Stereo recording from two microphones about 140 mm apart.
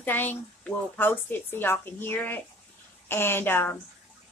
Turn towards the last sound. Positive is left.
turn(degrees=15)  # may be behind; listen again after turning